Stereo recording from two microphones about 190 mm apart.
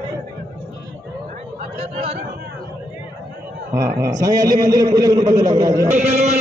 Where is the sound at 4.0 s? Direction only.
20° right (ahead or behind).